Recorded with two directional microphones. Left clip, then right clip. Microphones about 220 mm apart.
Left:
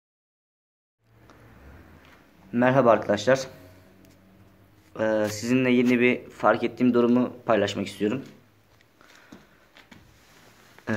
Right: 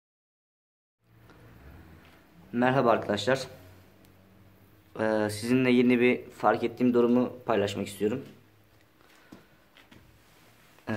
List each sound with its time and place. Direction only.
2.5 s speech: 5° left (ahead or behind)
4.9 s speech: 10° right (ahead or behind); by 8.2 s 5° left (ahead or behind)
9.3 s horse: 25° left (ahead or behind)